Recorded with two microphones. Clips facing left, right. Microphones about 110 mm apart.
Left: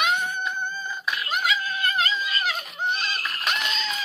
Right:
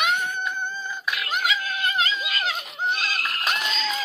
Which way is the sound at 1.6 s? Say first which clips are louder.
Even; 80° right.